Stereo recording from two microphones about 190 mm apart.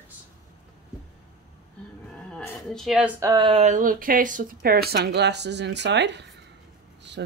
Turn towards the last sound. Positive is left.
turn(degrees=-65)  # may be behind; listen again after turning